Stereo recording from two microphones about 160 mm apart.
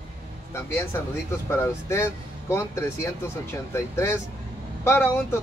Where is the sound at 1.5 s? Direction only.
15° left (ahead or behind).